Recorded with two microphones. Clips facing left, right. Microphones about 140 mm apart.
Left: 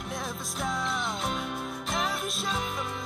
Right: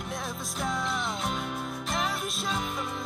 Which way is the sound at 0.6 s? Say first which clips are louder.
Even; centre (ahead or behind).